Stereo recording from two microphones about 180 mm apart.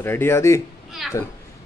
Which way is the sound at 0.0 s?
15° left (ahead or behind).